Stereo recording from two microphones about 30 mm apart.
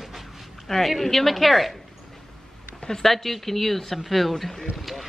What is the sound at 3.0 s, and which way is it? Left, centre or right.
Speech, centre.